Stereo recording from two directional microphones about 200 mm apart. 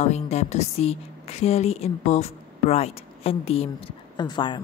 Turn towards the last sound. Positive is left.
turn(degrees=20)  # may be behind; listen again after turning